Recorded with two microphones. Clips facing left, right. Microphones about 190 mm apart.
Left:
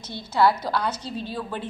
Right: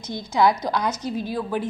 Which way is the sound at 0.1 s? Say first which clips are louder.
Right 1 dB; 15° right (ahead or behind).